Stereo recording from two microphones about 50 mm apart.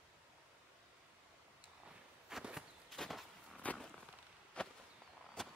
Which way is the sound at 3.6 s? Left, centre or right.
Left.